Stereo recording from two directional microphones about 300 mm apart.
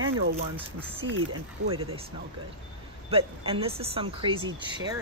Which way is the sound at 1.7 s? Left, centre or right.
Centre.